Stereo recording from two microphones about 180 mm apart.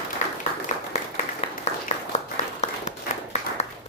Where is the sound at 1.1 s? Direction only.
40° left (ahead or behind).